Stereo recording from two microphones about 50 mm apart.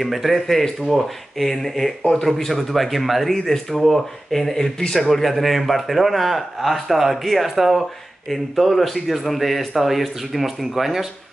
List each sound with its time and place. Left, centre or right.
0.0 s speech: centre